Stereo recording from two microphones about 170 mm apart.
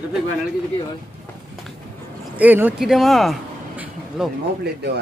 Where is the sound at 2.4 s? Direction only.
10° right (ahead or behind).